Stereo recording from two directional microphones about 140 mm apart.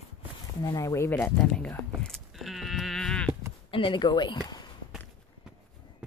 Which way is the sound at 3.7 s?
35° left (ahead or behind).